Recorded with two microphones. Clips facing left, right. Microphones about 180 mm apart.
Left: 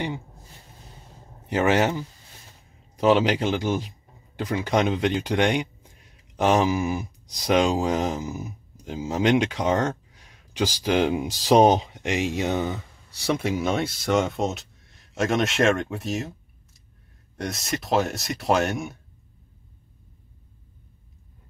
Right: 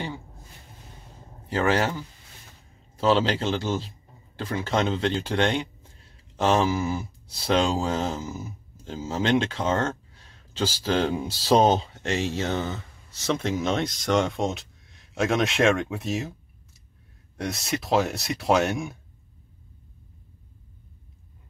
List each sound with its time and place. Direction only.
1.4 s speech: 20° left (ahead or behind)
3.0 s speech: 15° left (ahead or behind); by 16.3 s centre (ahead or behind)
17.4 s speech: centre (ahead or behind)